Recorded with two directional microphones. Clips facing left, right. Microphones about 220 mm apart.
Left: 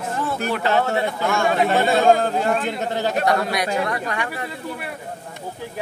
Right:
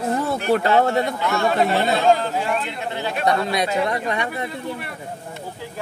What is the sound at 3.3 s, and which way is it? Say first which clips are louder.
A man's voice: even; 25° right (ahead or behind).